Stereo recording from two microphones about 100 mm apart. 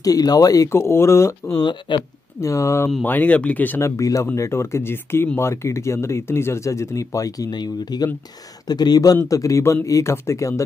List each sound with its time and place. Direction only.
0.0 s speech: 40° left (ahead or behind)
1.6 s speech: 50° left (ahead or behind)
2.4 s speech: 30° left (ahead or behind)
3.0 s speech: 15° left (ahead or behind)
3.8 s speech: 30° left (ahead or behind)
7.9 s speech: 40° left (ahead or behind)